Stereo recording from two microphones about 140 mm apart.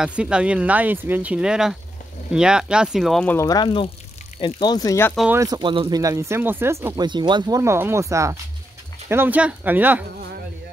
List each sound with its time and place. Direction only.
0.0 s speech: 5° right (ahead or behind)
3.3 s speech: 25° left (ahead or behind)
5.3 s speech: 25° right (ahead or behind)
5.6 s speech: 35° right (ahead or behind); by 7.0 s 20° right (ahead or behind)
7.0 s speech: 35° right (ahead or behind); by 10.0 s 10° right (ahead or behind)